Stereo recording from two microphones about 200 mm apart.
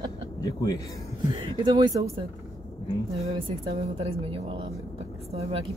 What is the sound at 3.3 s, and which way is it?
Speech, 25° right (ahead or behind).